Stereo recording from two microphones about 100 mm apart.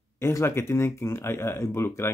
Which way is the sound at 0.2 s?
30° left (ahead or behind).